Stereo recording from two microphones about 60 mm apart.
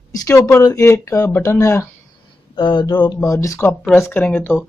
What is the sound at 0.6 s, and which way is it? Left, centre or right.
Speech, left.